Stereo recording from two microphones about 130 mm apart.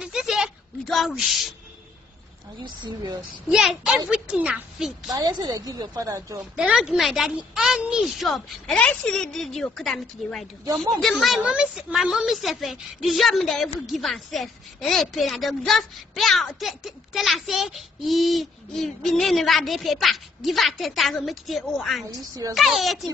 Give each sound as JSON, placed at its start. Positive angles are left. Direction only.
{"t": 0.0, "sound": "a sound", "side_deg": -5}
{"t": 2.6, "sound": "speech", "side_deg": -35}
{"t": 3.4, "sound": "a woman's voice", "side_deg": -5}
{"t": 5.1, "sound": "a woman's voice", "side_deg": -30}
{"t": 6.5, "sound": "a woman's voice", "side_deg": -5}